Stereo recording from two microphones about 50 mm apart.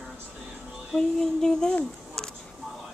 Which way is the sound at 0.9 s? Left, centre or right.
Centre.